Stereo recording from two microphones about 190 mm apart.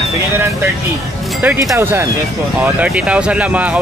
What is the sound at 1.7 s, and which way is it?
Speech, 15° right (ahead or behind).